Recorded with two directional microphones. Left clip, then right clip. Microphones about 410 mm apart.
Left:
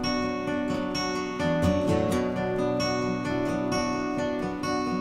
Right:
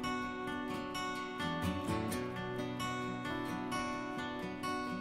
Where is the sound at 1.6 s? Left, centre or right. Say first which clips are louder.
Left 13 dB; centre.